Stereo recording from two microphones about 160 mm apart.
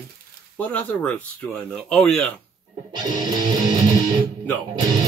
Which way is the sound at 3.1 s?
25° right (ahead or behind).